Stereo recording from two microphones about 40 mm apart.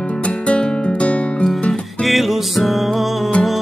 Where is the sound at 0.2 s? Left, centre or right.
Left.